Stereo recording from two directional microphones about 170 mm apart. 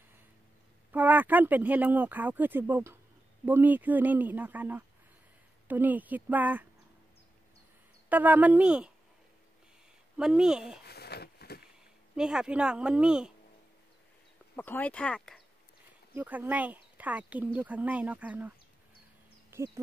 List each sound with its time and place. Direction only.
0.9 s speech: 10° right (ahead or behind)
8.1 s speech: 10° right (ahead or behind)
10.1 s speech: 5° right (ahead or behind)
10.9 s a sound: 70° left (ahead or behind)
12.2 s speech: 5° right (ahead or behind)
14.5 s speech: 10° left (ahead or behind)
16.2 s speech: 10° right (ahead or behind)
19.5 s speech: 15° right (ahead or behind)